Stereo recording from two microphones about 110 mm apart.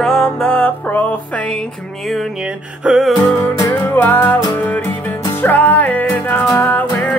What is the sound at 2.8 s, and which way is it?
Music, 5° right (ahead or behind).